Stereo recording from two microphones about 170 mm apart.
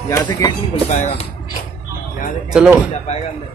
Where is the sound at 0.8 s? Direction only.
40° left (ahead or behind).